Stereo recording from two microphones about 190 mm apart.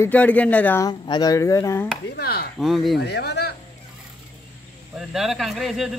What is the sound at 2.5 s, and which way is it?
Speech, centre (ahead or behind).